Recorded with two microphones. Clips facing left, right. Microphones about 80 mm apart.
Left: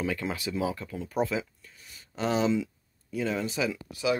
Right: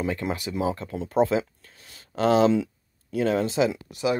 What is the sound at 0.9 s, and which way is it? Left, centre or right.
Speech, right.